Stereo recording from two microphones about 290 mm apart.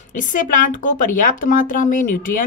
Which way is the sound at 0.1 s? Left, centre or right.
Left.